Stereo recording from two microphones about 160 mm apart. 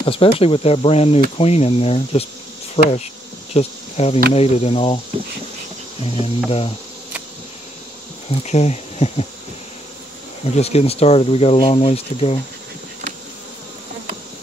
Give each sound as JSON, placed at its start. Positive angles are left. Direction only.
{"t": 0.0, "sound": "speech", "side_deg": 35}
{"t": 6.1, "sound": "speech", "side_deg": 35}
{"t": 8.5, "sound": "speech", "side_deg": 45}
{"t": 10.5, "sound": "speech", "side_deg": 40}